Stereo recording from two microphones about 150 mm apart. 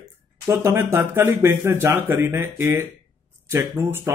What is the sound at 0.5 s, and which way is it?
Speech, 15° right (ahead or behind).